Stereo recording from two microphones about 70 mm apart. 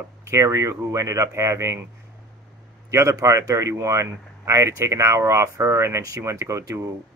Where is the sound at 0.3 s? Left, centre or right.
Right.